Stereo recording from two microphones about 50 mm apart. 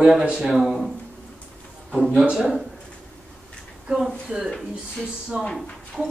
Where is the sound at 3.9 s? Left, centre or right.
Centre.